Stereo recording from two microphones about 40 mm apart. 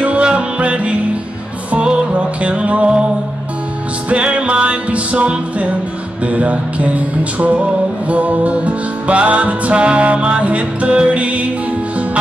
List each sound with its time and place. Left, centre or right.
0.0 s music: right
2.1 s music: right
4.1 s music: right